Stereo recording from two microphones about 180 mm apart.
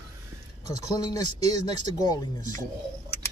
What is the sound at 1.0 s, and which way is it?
Speech, 20° left (ahead or behind).